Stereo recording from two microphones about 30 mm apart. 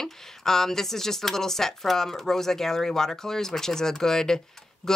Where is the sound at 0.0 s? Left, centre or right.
Centre.